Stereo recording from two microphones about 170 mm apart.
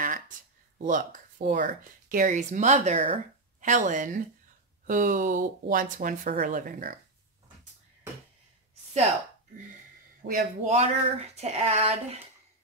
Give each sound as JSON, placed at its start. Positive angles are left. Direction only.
{"t": 0.7, "sound": "speech", "side_deg": -50}
{"t": 10.2, "sound": "speech", "side_deg": -50}